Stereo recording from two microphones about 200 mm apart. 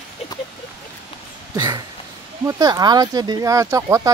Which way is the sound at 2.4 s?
15° right (ahead or behind).